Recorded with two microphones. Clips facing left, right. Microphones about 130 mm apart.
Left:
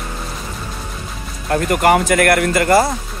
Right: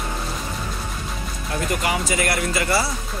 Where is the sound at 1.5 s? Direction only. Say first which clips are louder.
Left 10 dB; 55° left (ahead or behind).